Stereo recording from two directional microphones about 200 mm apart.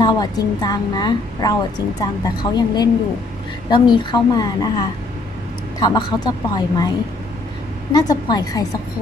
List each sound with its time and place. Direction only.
0.0 s a woman's voice: 20° left (ahead or behind)
7.9 s a woman's voice: 20° left (ahead or behind)